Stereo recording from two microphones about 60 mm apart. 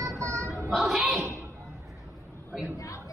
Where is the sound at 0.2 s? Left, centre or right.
Right.